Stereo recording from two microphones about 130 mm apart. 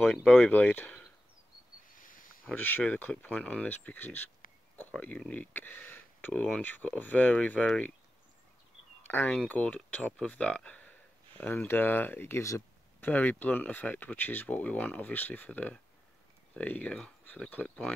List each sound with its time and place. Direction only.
0.0 s speech: 5° left (ahead or behind)
2.0 s a sound: 90° left
2.5 s speech: 15° left (ahead or behind)
4.4 s a sound: 90° left
4.7 s speech: 10° left (ahead or behind)
9.0 s speech: 10° left (ahead or behind)